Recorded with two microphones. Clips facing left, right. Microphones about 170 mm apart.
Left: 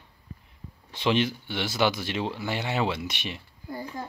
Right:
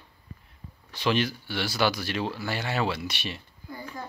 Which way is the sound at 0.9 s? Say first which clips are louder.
Left 1 dB; 25° left (ahead or behind).